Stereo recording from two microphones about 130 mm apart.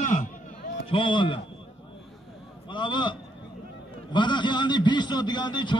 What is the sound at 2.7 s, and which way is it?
A man's voice, 35° left (ahead or behind).